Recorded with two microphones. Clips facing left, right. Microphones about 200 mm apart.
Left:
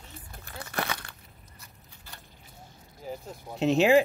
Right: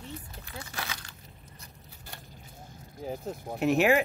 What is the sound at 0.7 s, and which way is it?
Crumpling, 60° left (ahead or behind).